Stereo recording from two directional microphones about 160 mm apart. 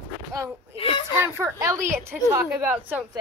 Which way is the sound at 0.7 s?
35° left (ahead or behind).